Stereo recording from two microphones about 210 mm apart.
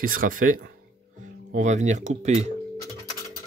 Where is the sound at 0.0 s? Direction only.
40° right (ahead or behind).